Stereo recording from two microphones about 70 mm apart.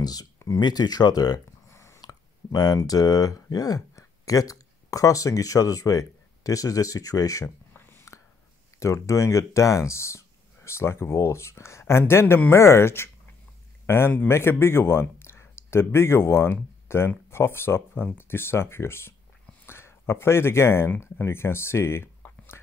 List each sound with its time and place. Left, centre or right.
0.0 s speech: left
0.6 s speech: left
1.7 s a sound: left
2.0 s speech: left
7.4 s a sound: left
8.7 s speech: left